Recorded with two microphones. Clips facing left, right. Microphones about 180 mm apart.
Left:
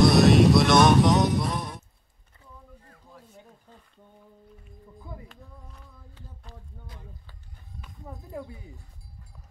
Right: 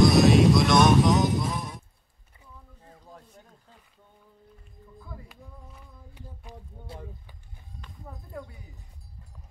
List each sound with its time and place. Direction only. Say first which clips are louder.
0.0 s music: left 1 dB; centre (ahead or behind)
5.3 s speech: right 1 dB; 5° right (ahead or behind)
6.1 s a sound: right 5 dB; 15° right (ahead or behind)